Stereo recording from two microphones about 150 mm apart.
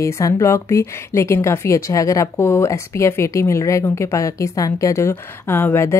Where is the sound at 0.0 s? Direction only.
20° left (ahead or behind).